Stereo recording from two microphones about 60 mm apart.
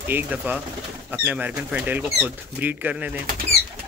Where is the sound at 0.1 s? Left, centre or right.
Right.